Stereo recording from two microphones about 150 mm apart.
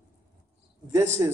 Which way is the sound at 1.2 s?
20° right (ahead or behind).